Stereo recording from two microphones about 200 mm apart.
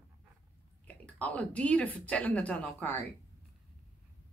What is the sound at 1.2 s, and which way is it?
A woman's voice, 5° left (ahead or behind).